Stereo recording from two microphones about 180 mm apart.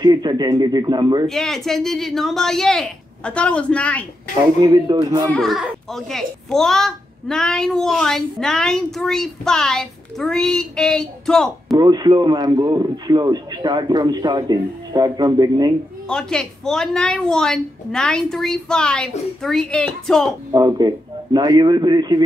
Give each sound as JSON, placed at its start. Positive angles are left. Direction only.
{"t": 0.0, "sound": "a man's voice", "side_deg": -25}
{"t": 1.3, "sound": "a child's voice", "side_deg": 0}
{"t": 4.6, "sound": "a man's voice", "side_deg": -25}
{"t": 5.3, "sound": "a child's voice", "side_deg": 0}
{"t": 11.8, "sound": "a man's voice", "side_deg": -25}
{"t": 16.1, "sound": "a child's voice", "side_deg": 5}
{"t": 20.5, "sound": "a man's voice", "side_deg": -25}